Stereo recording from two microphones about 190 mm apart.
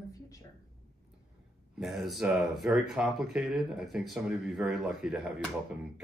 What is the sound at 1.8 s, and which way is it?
Speech, centre (ahead or behind).